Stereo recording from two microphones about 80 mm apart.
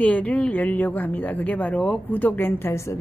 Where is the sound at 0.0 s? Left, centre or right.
Centre.